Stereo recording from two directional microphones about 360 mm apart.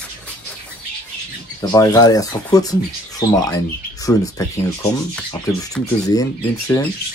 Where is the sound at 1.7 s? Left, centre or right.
Centre.